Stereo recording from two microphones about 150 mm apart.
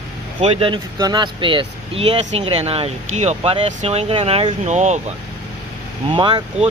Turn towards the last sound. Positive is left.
turn(degrees=-30)  # may be behind; listen again after turning